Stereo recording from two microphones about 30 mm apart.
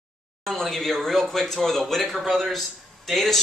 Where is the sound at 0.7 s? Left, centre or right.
Centre.